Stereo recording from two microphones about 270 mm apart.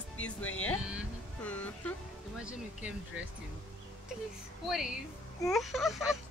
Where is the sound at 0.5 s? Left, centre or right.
Left.